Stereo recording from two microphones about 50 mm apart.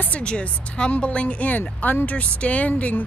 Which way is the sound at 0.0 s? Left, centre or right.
Left.